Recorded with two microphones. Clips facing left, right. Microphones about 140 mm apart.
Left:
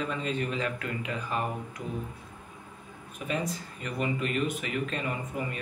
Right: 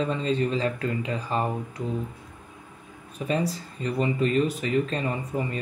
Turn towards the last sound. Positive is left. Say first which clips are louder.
# right 4 dB
turn(degrees=-35)  # may be behind; listen again after turning